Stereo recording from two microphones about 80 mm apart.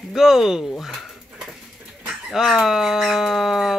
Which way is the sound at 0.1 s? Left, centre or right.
Centre.